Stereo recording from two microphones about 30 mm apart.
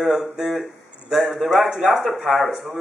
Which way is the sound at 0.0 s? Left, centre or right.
Centre.